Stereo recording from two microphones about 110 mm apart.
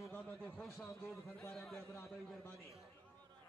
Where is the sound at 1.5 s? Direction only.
Centre (ahead or behind).